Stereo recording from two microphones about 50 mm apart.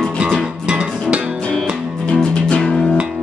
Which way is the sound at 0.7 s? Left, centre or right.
Right.